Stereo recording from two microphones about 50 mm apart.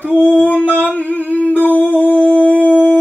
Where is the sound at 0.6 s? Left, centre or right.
Left.